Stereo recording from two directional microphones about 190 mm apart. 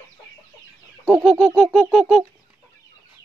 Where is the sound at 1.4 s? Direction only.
5° left (ahead or behind).